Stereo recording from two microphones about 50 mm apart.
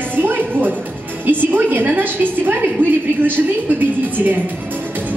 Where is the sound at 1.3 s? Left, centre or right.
Right.